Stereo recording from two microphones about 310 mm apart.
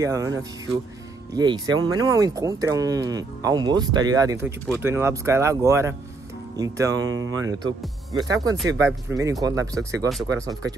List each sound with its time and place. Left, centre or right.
0.0 s speech: centre
7.1 s speech: right
8.1 s speech: centre